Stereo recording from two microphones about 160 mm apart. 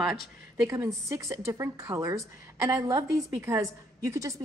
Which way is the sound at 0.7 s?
20° right (ahead or behind).